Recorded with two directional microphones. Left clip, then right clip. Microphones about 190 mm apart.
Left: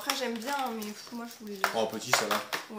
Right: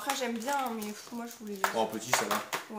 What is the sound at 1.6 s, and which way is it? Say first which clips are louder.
Speech: left 1 dB; 20° left (ahead or behind).